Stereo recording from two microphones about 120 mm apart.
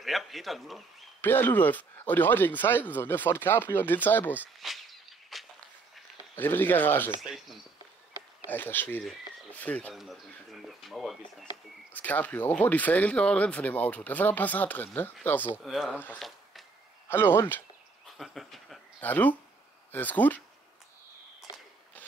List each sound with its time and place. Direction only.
0.0 s speech: centre (ahead or behind)
1.2 s speech: 15° left (ahead or behind)
4.6 s a sound: centre (ahead or behind)
6.3 s speech: 15° left (ahead or behind)
7.2 s speech: centre (ahead or behind)
8.5 s speech: 15° left (ahead or behind)
9.9 s speech: centre (ahead or behind)
11.9 s speech: 15° left (ahead or behind)
15.6 s speech: centre (ahead or behind)
15.9 s speech: 15° left (ahead or behind)
16.2 s a sound: centre (ahead or behind)
17.1 s speech: 20° left (ahead or behind)
18.1 s a sound: centre (ahead or behind)
18.9 s speech: 15° left (ahead or behind)